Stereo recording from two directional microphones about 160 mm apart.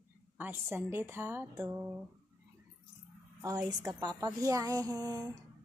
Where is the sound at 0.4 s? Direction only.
15° right (ahead or behind).